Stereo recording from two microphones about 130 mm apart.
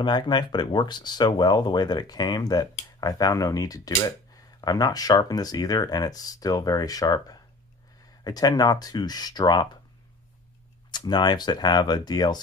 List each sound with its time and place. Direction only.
0.0 s speech: 35° left (ahead or behind)
10.9 s speech: 35° left (ahead or behind)